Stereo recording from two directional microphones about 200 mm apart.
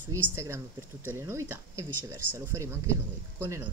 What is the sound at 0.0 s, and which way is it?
Speech, 15° right (ahead or behind).